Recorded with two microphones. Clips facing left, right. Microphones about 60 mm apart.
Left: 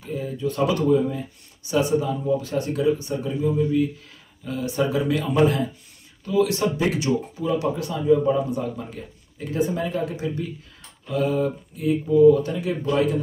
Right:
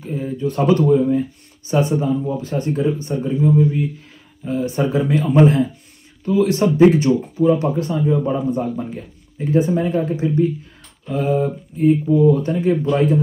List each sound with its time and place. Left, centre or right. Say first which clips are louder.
0.0 s speech: right 4 dB; right
3.3 s a man's voice: right 7 dB; centre
4.5 s speech: right 4 dB; right